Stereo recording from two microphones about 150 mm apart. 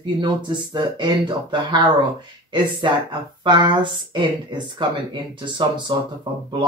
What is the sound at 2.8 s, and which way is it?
Speech, 30° right (ahead or behind).